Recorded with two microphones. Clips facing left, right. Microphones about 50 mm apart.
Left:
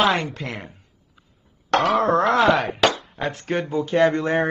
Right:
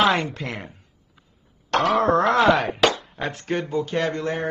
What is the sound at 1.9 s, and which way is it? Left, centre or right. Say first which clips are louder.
Speech: right 1 dB; centre.